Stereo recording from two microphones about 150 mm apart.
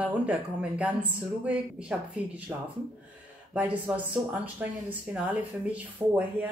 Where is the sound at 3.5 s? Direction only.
10° right (ahead or behind).